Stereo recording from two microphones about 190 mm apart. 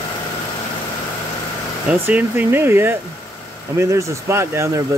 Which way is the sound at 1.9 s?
10° right (ahead or behind).